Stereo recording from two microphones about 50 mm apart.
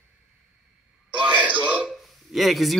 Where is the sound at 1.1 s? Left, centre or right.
Right.